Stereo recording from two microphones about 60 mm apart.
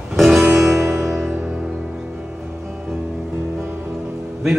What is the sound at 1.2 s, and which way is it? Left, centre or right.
Music, right.